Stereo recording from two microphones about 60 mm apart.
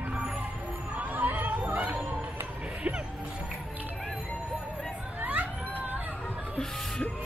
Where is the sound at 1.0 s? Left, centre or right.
Right.